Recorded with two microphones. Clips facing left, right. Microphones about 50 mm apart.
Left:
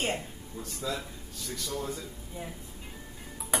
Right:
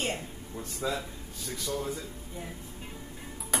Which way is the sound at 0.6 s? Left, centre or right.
Right.